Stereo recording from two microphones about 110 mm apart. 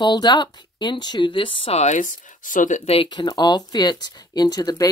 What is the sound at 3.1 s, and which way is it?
Speech, 40° left (ahead or behind).